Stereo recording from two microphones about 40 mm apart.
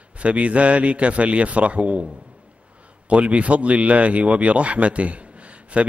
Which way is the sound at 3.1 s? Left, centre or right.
Right.